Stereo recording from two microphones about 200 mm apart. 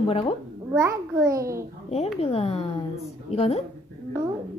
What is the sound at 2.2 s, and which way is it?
A woman's voice, 30° left (ahead or behind).